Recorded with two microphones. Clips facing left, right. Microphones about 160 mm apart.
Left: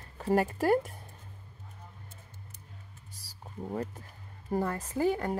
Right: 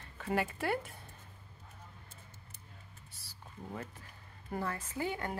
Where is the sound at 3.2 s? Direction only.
35° left (ahead or behind).